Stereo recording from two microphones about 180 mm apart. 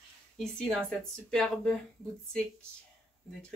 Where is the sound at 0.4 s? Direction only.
5° left (ahead or behind).